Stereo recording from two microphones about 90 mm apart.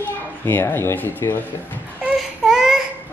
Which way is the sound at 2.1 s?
5° right (ahead or behind).